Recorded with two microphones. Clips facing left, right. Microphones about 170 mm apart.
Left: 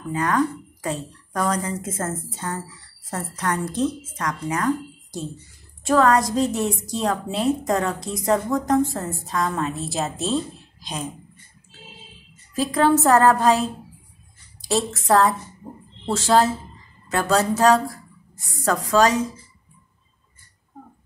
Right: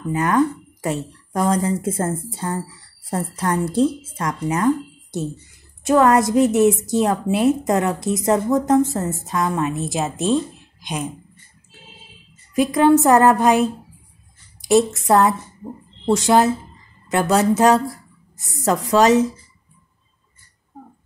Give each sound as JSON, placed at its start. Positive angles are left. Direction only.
{"t": 0.1, "sound": "a woman's voice", "side_deg": -25}
{"t": 12.5, "sound": "a woman's voice", "side_deg": -15}
{"t": 14.9, "sound": "a woman's voice", "side_deg": -20}